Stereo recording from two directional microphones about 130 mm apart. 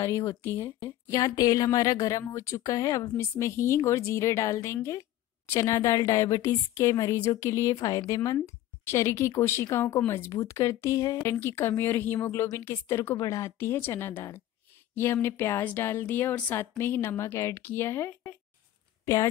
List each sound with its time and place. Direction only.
0.0 s speech: 20° left (ahead or behind)